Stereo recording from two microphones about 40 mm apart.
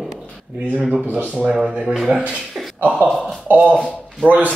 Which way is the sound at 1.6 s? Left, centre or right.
Right.